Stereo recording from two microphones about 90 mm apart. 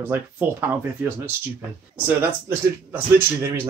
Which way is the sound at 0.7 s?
20° right (ahead or behind).